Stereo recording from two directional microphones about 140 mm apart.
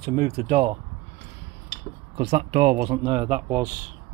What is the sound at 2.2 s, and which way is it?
Speech, 45° right (ahead or behind).